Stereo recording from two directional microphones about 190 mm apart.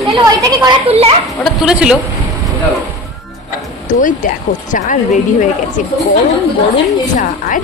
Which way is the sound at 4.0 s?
45° left (ahead or behind).